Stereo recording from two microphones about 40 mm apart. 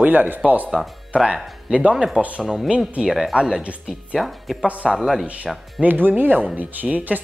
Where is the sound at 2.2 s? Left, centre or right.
Right.